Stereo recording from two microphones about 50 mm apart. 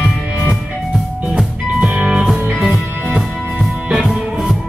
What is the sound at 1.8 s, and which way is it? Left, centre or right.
Music, right.